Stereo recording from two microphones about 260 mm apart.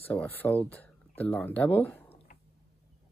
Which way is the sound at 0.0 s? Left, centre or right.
Centre.